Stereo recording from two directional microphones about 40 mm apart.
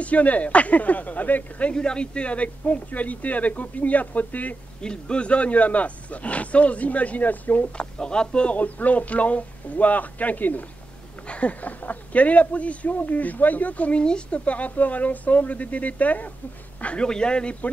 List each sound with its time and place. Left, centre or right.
0.0 s speech: left
1.7 s speech: left
4.8 s speech: left
7.7 s speech: left
8.5 s speech: left
11.2 s speech: left
16.8 s speech: left